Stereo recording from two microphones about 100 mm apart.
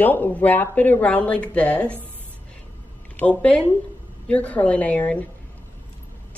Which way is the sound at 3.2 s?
15° left (ahead or behind).